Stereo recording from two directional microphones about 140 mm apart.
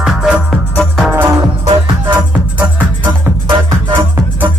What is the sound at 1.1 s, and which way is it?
Music, 15° right (ahead or behind).